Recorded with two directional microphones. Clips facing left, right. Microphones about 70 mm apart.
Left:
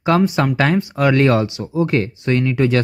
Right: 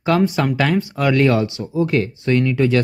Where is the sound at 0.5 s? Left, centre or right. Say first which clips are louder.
Left 2 dB; left.